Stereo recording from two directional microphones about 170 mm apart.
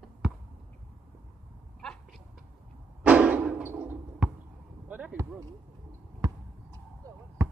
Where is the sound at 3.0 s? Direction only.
5° right (ahead or behind).